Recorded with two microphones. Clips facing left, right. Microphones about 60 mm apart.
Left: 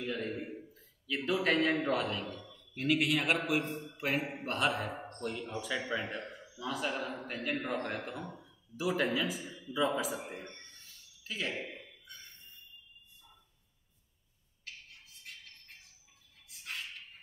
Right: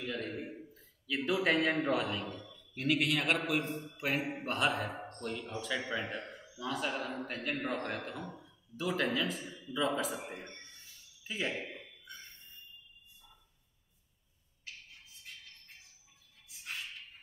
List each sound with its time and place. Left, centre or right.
0.0 s a sound: centre
1.0 s a man's voice: centre
11.2 s speech: centre
11.5 s a man's voice: centre